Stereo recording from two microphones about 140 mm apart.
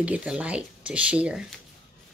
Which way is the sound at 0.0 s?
10° right (ahead or behind).